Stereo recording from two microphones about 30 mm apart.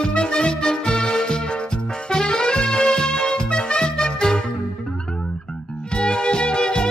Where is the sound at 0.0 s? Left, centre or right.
Left.